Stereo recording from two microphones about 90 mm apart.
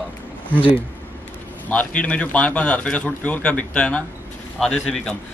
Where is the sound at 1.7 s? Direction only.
15° left (ahead or behind).